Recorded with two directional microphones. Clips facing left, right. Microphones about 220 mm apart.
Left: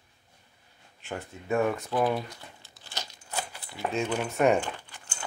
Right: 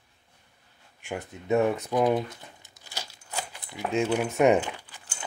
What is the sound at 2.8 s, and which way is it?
Crumpling, 10° right (ahead or behind).